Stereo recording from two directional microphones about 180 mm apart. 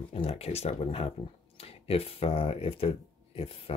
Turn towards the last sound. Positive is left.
turn(degrees=30)  # may be behind; listen again after turning